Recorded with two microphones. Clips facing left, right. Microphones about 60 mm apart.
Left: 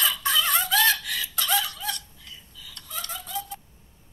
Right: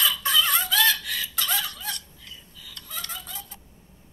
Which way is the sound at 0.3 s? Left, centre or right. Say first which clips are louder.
Left 1 dB; left.